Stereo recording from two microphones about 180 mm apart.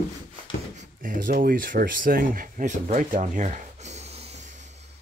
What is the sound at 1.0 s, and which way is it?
Speech, 50° right (ahead or behind).